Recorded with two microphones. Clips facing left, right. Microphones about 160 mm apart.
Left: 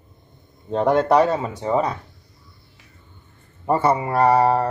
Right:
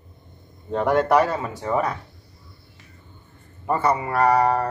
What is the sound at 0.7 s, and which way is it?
Speech, 20° left (ahead or behind).